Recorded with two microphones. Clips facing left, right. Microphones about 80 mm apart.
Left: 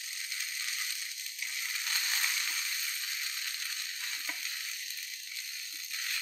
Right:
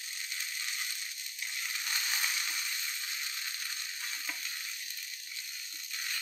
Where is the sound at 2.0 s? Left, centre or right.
Centre.